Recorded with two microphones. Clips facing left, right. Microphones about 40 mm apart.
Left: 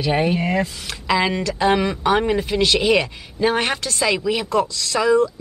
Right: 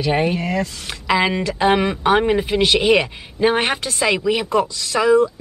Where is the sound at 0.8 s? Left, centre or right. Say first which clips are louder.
Right 4 dB; centre.